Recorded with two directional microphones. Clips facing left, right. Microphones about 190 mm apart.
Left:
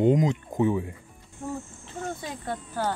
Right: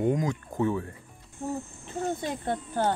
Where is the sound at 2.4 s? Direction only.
25° right (ahead or behind).